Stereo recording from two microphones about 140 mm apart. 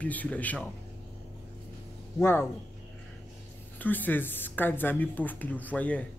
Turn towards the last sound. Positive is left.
turn(degrees=10)  # may be behind; listen again after turning